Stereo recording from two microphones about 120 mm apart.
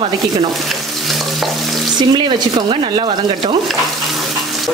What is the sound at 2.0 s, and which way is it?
Speech, 40° right (ahead or behind).